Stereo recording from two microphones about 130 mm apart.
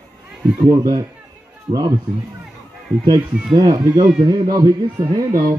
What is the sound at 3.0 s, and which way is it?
Speech, 30° right (ahead or behind).